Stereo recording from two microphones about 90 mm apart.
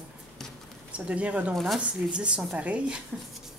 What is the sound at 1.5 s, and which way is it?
Speech, centre (ahead or behind).